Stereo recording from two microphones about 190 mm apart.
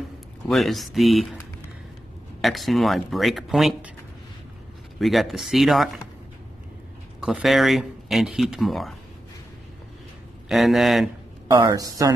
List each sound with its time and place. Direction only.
0.5 s speech: centre (ahead or behind)
2.4 s speech: centre (ahead or behind)
4.9 s speech: centre (ahead or behind)
7.2 s speech: centre (ahead or behind)
10.5 s speech: centre (ahead or behind)
11.6 s speech: 20° right (ahead or behind)